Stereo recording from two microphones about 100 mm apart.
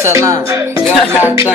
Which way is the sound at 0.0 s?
30° right (ahead or behind).